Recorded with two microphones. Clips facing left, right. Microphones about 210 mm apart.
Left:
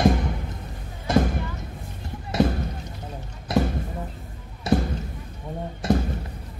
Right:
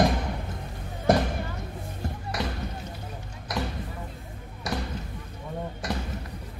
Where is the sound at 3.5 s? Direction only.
25° left (ahead or behind).